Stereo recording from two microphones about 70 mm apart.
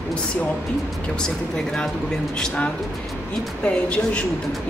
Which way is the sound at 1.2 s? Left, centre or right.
Centre.